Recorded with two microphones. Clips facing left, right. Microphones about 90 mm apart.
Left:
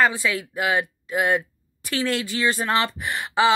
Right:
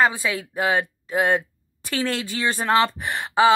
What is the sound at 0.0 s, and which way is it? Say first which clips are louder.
Speech: even; 25° right (ahead or behind).